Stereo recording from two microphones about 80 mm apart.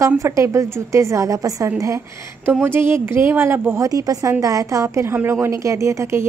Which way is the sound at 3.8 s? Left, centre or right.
Right.